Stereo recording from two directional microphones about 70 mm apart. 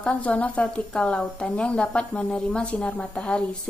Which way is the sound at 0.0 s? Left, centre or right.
Centre.